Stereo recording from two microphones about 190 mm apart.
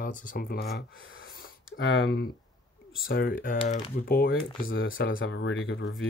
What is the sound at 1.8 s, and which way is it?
Speech, 60° left (ahead or behind).